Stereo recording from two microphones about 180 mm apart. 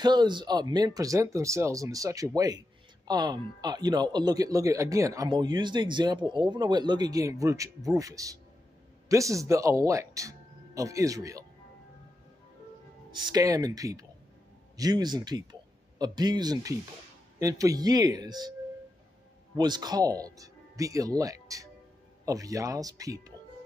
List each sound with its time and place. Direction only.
0.0 s speech: 25° right (ahead or behind)
13.1 s speech: 25° right (ahead or behind)
19.5 s speech: 25° right (ahead or behind)